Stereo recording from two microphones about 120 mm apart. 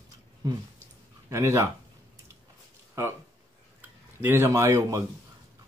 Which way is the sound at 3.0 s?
20° right (ahead or behind).